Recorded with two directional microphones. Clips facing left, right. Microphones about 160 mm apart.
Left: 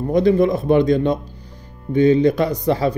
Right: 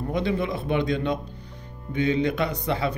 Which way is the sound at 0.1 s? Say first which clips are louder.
Left 12 dB; 40° left (ahead or behind).